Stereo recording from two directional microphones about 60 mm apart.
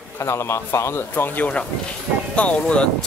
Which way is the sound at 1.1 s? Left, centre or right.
Left.